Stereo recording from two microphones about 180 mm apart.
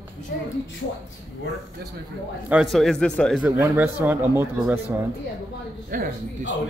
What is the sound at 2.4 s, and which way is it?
Speech, centre (ahead or behind).